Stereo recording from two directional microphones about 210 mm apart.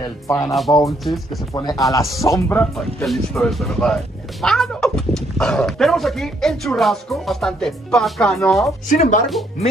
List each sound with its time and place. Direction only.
0.3 s speech: 15° left (ahead or behind)
1.0 s speech: centre (ahead or behind)
1.5 s speech: 15° left (ahead or behind); by 8.7 s centre (ahead or behind)
8.8 s speech: 40° left (ahead or behind)